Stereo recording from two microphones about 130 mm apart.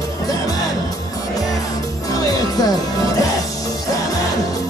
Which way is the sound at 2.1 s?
30° left (ahead or behind).